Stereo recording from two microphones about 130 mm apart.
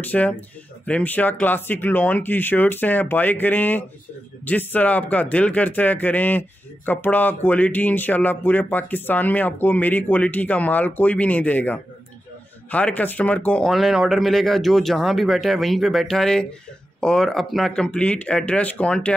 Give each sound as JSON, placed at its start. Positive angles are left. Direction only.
{"t": 0.0, "sound": "speech", "side_deg": 10}